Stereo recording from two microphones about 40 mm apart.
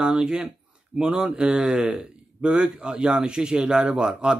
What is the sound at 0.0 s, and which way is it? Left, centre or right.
Speech, centre.